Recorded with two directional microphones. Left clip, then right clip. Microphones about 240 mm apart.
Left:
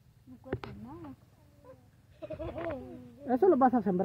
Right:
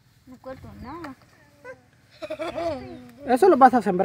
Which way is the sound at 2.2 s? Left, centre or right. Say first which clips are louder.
Right 9 dB; centre.